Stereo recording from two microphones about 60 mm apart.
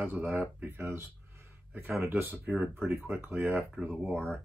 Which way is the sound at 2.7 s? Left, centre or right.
Right.